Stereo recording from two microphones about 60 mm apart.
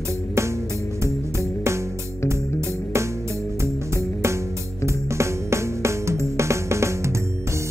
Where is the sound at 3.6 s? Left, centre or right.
Right.